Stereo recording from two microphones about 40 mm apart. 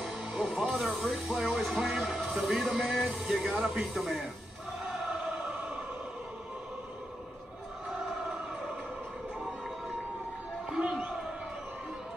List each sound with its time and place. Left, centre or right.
0.4 s music: centre
1.2 s speech: centre
2.2 s music: centre
2.8 s speech: centre
4.8 s chant: centre
10.8 s crowd: right